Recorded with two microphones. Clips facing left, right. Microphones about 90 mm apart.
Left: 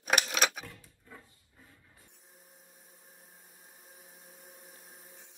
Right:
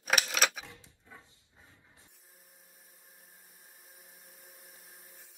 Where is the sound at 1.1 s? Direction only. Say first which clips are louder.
Left 2 dB; 20° right (ahead or behind).